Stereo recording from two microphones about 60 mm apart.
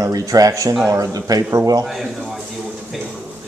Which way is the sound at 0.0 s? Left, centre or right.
Right.